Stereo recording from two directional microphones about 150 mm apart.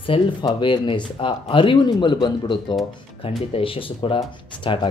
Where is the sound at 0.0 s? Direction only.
35° left (ahead or behind).